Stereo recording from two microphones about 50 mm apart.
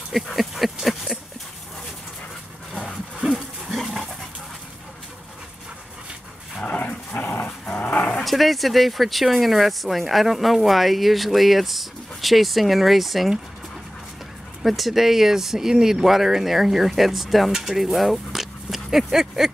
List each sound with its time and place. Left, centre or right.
0.1 s speech: centre
2.7 s dog: centre
3.2 s wild animals: centre
3.6 s dog: centre
6.6 s dog: left
8.2 s speech: centre
14.6 s speech: centre